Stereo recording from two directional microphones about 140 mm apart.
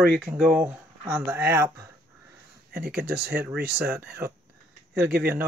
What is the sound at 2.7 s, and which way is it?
Speech, 90° right.